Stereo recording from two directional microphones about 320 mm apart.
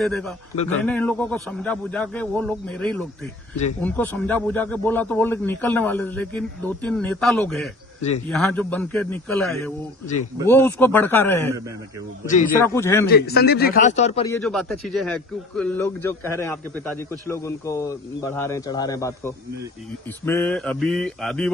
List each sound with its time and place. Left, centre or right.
0.0 s a man's voice: centre
12.6 s speech: centre
13.0 s a man's voice: left
14.3 s a man's voice: centre